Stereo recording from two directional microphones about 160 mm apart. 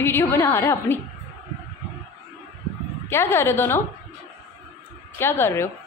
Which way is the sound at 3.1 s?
15° left (ahead or behind).